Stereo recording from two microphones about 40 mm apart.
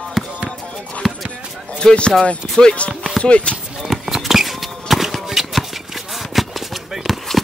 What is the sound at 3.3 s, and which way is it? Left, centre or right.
Speech, left.